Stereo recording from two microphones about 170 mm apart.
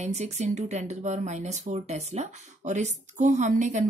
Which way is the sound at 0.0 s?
40° right (ahead or behind).